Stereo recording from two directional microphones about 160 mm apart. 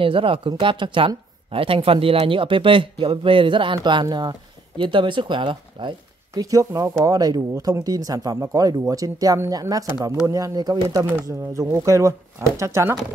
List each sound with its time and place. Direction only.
0.0 s speech: 35° right (ahead or behind); by 12.9 s 20° right (ahead or behind)